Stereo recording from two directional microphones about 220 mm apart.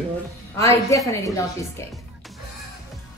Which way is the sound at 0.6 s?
15° left (ahead or behind).